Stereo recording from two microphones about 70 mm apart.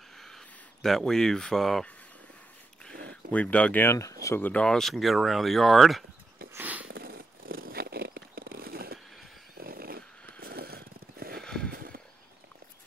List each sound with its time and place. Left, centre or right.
0.8 s speech: centre
3.3 s speech: left
3.8 s speech: left
4.4 s speech: left
4.6 s speech: centre
6.6 s dog: right
11.4 s horse: centre